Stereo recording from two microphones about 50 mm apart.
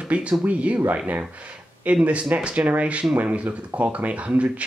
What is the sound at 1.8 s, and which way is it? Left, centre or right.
Speech, right.